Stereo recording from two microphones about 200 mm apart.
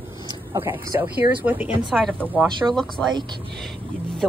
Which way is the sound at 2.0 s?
5° left (ahead or behind).